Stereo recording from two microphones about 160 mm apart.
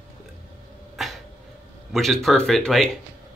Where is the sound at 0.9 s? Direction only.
Centre (ahead or behind).